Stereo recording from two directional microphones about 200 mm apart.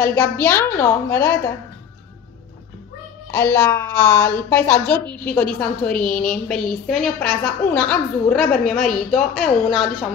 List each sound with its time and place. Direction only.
0.0 s a woman's voice: 10° left (ahead or behind)
3.3 s a woman's voice: 10° left (ahead or behind)